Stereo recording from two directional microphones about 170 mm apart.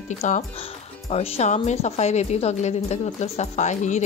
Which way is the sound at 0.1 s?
40° left (ahead or behind).